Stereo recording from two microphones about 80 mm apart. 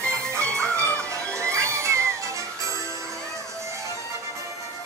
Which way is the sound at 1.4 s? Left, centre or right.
Right.